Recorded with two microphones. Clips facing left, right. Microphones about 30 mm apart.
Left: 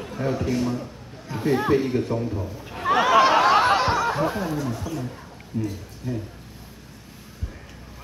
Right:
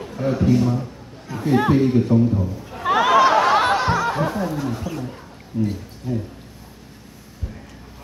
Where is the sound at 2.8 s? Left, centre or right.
Right.